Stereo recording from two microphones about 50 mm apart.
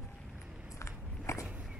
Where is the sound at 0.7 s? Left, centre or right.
Left.